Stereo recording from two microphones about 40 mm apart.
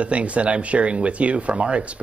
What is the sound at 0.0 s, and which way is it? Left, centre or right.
Speech, right.